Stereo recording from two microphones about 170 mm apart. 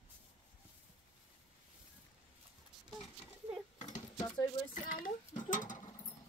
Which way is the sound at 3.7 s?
45° left (ahead or behind).